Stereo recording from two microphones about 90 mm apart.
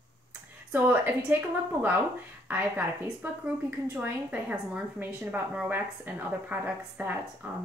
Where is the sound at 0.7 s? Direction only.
20° right (ahead or behind).